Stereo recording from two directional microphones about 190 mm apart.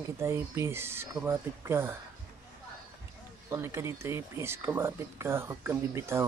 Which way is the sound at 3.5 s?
15° right (ahead or behind).